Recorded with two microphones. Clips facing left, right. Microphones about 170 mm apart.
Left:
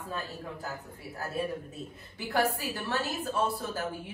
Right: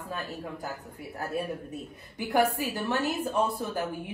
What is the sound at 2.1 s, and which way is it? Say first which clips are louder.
A woman's voice: right 4 dB; 15° right (ahead or behind).